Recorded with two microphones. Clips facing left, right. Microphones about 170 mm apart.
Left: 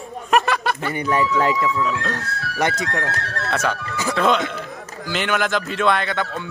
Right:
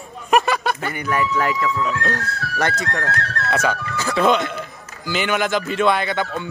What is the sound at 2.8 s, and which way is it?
Speech, 15° left (ahead or behind).